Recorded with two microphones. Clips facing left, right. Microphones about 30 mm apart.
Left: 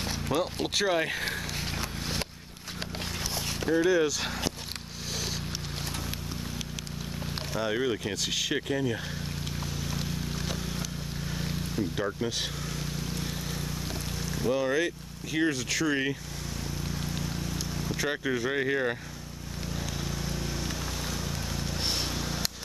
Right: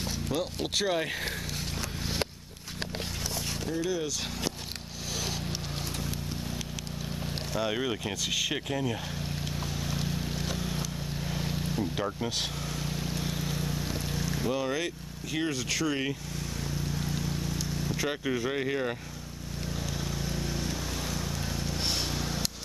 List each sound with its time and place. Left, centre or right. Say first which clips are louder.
0.3 s speech: left 3 dB; centre
3.8 s speech: left 8 dB; centre
7.6 s speech: left 3 dB; centre
8.5 s speech: left 2 dB; centre
9.9 s vehicle: right 1 dB; centre
12.7 s boat: right 1 dB; centre
15.3 s speech: left 3 dB; centre
16.9 s vehicle: right 1 dB; centre
22.1 s a sound: even; centre